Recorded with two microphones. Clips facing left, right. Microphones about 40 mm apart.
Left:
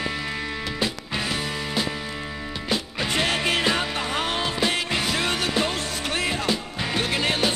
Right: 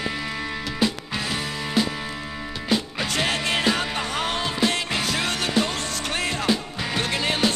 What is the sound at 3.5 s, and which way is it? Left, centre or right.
Music, centre.